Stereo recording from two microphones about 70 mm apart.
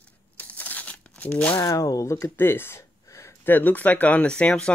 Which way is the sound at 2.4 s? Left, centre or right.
Left.